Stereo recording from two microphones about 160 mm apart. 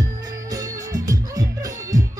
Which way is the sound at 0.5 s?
20° right (ahead or behind).